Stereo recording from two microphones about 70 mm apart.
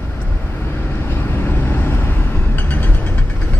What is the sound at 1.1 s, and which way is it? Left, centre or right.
Vehicle, left.